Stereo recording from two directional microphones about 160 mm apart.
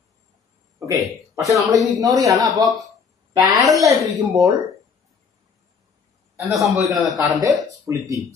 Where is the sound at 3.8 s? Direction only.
20° right (ahead or behind).